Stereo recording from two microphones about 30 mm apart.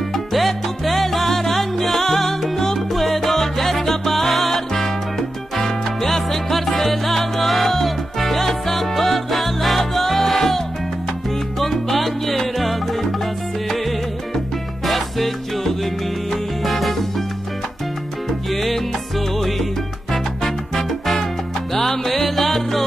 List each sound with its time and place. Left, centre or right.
0.1 s salsa music: centre
2.9 s music: centre
5.6 s salsa music: centre
11.6 s music: centre
13.7 s salsa music: centre
14.9 s music: centre
18.5 s music: centre
20.1 s music: centre